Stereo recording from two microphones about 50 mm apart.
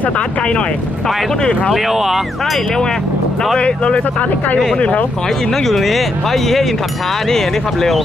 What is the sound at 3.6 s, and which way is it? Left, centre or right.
Speech, left.